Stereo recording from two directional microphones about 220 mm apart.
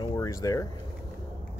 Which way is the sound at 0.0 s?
15° left (ahead or behind).